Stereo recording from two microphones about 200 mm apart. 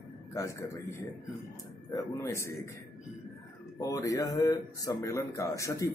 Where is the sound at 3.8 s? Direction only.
15° left (ahead or behind).